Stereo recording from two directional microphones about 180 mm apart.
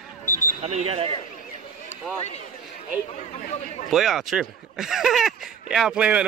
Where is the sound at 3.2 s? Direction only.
45° left (ahead or behind).